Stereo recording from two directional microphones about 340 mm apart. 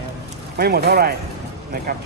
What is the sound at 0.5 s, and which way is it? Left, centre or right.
Speech, right.